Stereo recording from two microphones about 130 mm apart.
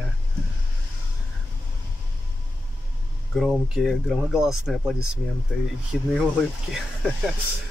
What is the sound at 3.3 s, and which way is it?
Speech, centre (ahead or behind).